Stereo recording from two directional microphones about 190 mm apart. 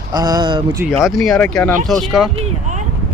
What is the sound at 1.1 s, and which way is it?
Speech, centre (ahead or behind).